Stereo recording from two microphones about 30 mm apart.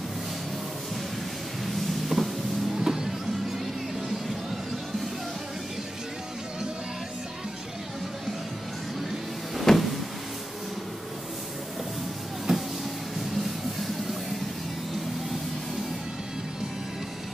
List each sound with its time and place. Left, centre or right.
1.8 s a sound: centre
2.8 s music: centre
9.7 s vehicle: centre
12.5 s music: right